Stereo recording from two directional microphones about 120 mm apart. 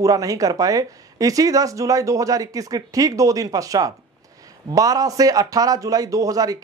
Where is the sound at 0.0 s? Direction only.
30° right (ahead or behind).